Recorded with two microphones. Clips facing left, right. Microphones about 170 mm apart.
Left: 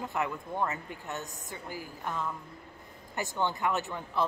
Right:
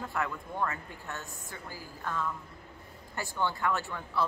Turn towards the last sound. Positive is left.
turn(degrees=20)  # may be behind; listen again after turning